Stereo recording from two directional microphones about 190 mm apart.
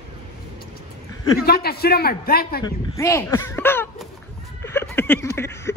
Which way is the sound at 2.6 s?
15° left (ahead or behind).